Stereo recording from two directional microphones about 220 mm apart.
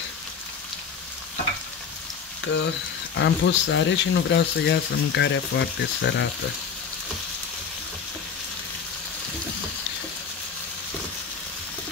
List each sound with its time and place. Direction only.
2.4 s frying: 55° left (ahead or behind)
3.2 s speech: 55° left (ahead or behind)